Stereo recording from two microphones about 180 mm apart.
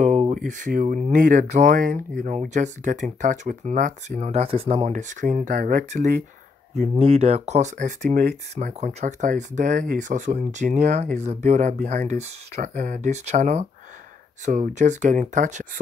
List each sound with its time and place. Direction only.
0.0 s speech: 40° right (ahead or behind)
4.2 s speech: 35° right (ahead or behind); by 8.4 s 55° right (ahead or behind)
8.5 s speech: 40° right (ahead or behind)